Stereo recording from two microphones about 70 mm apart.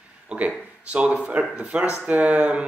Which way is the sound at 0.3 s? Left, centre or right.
Centre.